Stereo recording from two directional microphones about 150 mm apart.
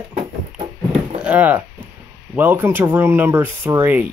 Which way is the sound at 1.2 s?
10° right (ahead or behind).